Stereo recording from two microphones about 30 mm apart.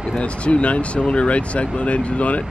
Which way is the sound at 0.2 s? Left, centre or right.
Left.